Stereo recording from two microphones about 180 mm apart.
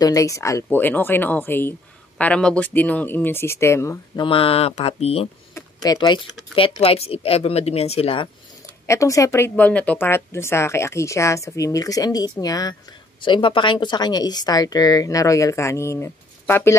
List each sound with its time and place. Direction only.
0.0 s speech: 20° left (ahead or behind)
4.2 s speech: 30° left (ahead or behind)
5.5 s a sound: 20° left (ahead or behind)
6.5 s speech: 30° left (ahead or behind)
8.8 s speech: 15° left (ahead or behind)